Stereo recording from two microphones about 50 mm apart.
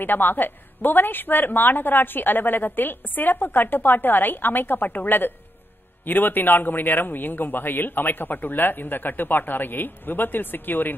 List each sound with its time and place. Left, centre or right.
0.0 s a woman's voice: left